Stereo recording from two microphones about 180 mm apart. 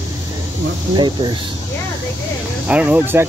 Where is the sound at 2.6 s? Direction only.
5° right (ahead or behind).